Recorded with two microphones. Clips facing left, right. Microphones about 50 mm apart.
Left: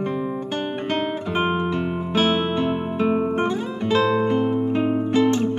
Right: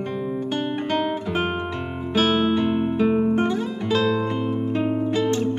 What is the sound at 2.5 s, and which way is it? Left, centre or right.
Guitar, centre.